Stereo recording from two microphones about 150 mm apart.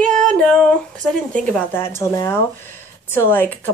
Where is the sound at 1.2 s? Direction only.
5° left (ahead or behind).